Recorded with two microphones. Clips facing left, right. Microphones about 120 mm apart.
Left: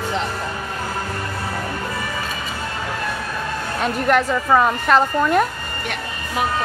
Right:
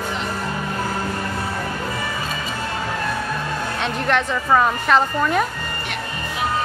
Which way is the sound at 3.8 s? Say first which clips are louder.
Left 4 dB; 5° left (ahead or behind).